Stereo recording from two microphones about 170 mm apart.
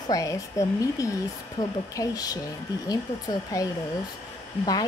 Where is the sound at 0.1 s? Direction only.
20° left (ahead or behind).